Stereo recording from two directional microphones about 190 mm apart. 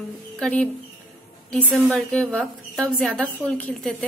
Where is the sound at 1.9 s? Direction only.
Centre (ahead or behind).